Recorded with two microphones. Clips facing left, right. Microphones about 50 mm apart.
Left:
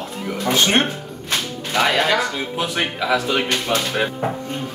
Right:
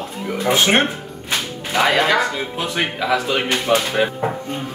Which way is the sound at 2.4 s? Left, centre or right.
Centre.